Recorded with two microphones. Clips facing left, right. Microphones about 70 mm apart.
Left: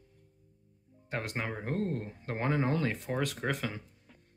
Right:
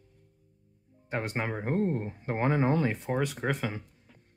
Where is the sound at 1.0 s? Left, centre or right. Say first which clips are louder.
Right 4 dB; right.